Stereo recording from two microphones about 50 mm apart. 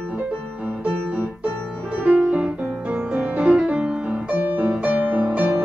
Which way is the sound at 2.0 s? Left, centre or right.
Right.